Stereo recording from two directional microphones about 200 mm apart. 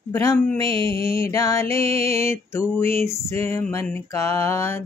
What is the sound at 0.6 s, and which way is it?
Music, 25° right (ahead or behind).